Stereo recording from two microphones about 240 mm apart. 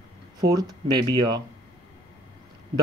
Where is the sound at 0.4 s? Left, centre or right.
Centre.